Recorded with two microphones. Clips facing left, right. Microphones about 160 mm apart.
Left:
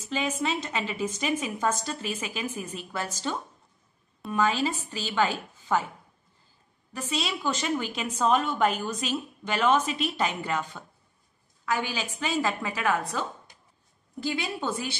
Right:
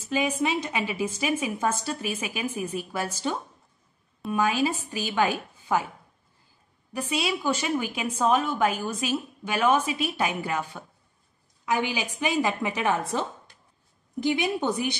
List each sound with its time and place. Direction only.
0.1 s a woman's voice: 10° right (ahead or behind)
6.9 s a woman's voice: 10° right (ahead or behind)